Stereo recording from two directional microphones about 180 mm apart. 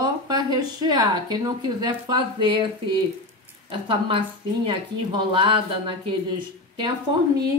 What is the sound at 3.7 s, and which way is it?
Speech, 30° right (ahead or behind).